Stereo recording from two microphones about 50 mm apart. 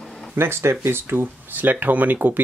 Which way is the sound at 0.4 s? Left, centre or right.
Right.